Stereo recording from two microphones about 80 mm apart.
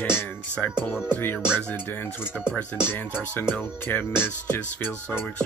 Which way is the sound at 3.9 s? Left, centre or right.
Left.